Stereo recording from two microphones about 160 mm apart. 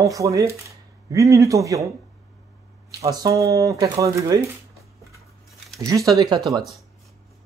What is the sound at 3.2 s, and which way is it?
Speech, 20° right (ahead or behind).